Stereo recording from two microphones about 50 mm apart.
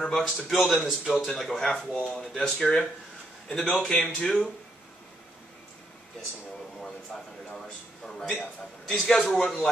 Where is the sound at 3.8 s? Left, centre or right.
Centre.